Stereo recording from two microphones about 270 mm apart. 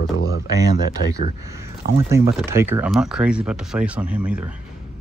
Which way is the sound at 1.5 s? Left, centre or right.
Centre.